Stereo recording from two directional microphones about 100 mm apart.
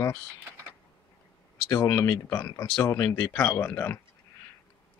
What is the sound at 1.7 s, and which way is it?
Speech, 30° left (ahead or behind).